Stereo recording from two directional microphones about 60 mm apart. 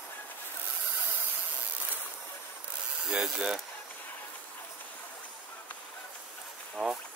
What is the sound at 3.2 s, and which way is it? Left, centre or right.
Ratchet, centre.